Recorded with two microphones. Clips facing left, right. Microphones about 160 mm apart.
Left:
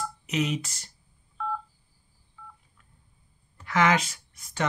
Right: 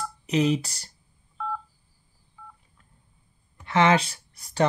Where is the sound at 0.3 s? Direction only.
30° right (ahead or behind).